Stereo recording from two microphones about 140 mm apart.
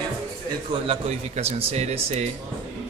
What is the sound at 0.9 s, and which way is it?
Speech, 50° right (ahead or behind).